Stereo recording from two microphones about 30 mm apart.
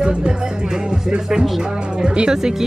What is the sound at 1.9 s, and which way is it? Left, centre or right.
Speech, right.